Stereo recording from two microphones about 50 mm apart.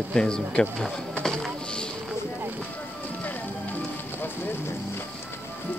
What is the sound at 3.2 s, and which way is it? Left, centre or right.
Music, left.